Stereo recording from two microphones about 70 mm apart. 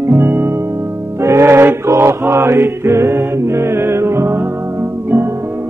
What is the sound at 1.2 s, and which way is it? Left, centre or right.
Mantra, right.